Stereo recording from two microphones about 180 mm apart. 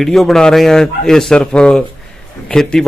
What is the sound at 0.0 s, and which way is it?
A man's voice, centre (ahead or behind).